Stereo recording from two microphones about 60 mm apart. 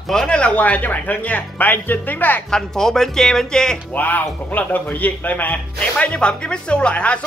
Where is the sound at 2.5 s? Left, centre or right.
Centre.